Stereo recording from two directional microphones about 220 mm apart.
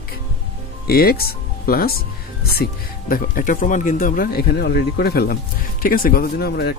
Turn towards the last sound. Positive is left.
turn(degrees=50)  # may be behind; listen again after turning